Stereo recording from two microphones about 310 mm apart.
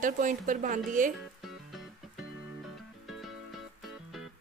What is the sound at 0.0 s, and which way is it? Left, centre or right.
Speech, right.